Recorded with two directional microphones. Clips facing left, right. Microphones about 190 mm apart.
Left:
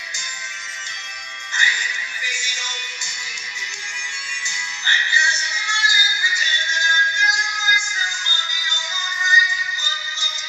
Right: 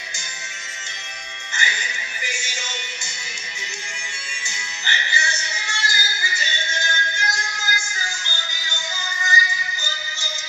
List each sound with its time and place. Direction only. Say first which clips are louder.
1.5 s music: right 1 dB; 25° right (ahead or behind)
4.5 s music: right 1 dB; 20° right (ahead or behind)